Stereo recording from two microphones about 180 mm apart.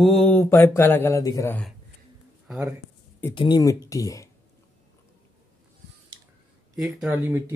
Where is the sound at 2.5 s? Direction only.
5° right (ahead or behind).